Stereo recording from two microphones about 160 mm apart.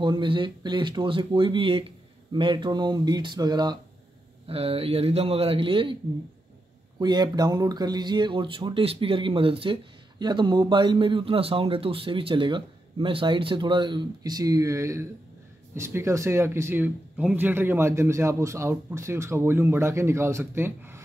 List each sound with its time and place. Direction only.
0.0 s speech: 30° right (ahead or behind)
4.5 s a man's voice: 40° right (ahead or behind)
7.0 s speech: 25° right (ahead or behind)